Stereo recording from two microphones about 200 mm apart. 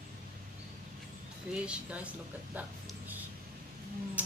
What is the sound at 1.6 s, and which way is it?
Speech, 5° right (ahead or behind).